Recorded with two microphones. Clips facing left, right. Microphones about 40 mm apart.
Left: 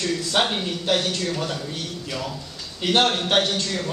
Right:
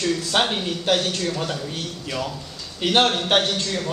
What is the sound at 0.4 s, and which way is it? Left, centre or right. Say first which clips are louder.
Speech: left 1 dB; centre.